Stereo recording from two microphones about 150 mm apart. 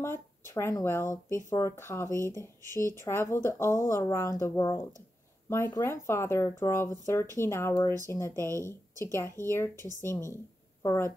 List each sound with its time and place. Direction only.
0.0 s a woman's voice: 15° left (ahead or behind)